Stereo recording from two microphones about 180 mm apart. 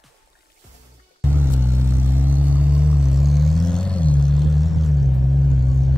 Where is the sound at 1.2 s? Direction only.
10° right (ahead or behind).